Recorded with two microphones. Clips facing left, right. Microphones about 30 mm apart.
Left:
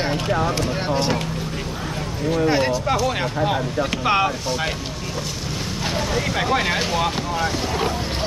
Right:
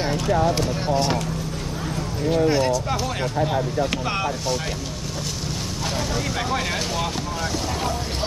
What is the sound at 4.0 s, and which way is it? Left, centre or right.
Speech, left.